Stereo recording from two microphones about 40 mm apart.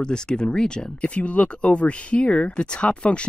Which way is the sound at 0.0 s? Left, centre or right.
Left.